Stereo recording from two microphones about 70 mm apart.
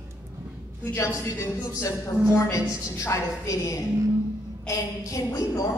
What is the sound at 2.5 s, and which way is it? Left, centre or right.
A woman's voice, left.